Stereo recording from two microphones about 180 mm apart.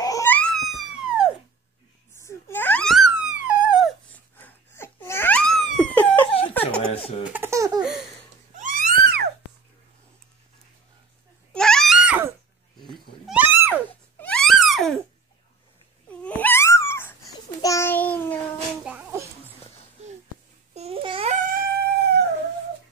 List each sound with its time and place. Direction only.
0.0 s a sound: 15° left (ahead or behind); by 1.3 s 5° right (ahead or behind)
2.1 s wail: 15° left (ahead or behind); by 3.9 s 5° right (ahead or behind)
4.4 s a sound: 15° left (ahead or behind)
6.9 s baby laughter: 30° left (ahead or behind)
7.2 s laughter: 10° right (ahead or behind)
7.8 s laughter: centre (ahead or behind)
8.5 s a sound: 50° right (ahead or behind)
11.5 s a sound: 5° left (ahead or behind)
14.2 s wail: 5° left (ahead or behind)
16.1 s babbling: 10° left (ahead or behind)
18.9 s babbling: 10° right (ahead or behind)
20.7 s babbling: 35° right (ahead or behind)
21.3 s dog: 45° right (ahead or behind)